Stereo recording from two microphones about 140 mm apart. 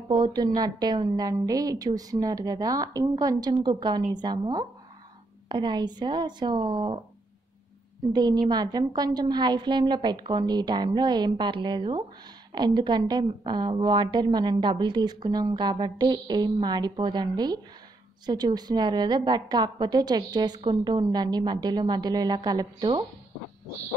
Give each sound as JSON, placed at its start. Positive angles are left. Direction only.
{"t": 0.1, "sound": "a woman's voice", "side_deg": -35}
{"t": 8.1, "sound": "a woman's voice", "side_deg": -30}